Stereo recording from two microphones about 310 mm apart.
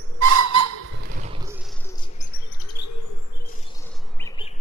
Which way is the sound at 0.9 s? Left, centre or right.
Right.